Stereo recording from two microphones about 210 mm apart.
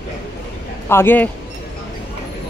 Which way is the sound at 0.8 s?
10° left (ahead or behind).